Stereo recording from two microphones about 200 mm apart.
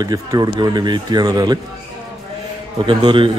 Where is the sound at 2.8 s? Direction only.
25° right (ahead or behind).